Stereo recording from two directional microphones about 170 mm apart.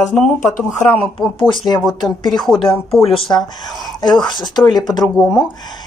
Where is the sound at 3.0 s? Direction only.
35° left (ahead or behind).